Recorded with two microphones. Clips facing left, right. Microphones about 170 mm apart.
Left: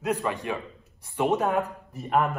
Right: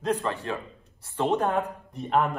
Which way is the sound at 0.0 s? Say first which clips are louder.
Even; 10° left (ahead or behind).